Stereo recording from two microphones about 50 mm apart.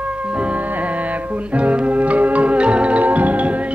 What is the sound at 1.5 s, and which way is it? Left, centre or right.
Music, right.